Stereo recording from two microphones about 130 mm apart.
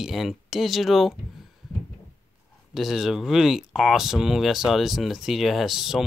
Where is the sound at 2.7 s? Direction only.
Centre (ahead or behind).